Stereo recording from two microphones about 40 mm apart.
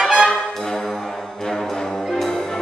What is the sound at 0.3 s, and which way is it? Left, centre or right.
Brass instrument, centre.